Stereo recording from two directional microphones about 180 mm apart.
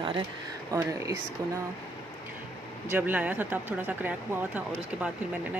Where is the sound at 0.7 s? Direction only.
20° right (ahead or behind).